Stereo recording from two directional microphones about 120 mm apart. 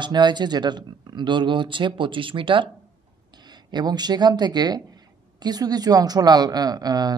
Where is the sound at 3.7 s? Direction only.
35° right (ahead or behind).